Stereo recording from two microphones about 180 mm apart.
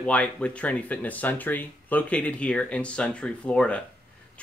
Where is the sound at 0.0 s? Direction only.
5° left (ahead or behind).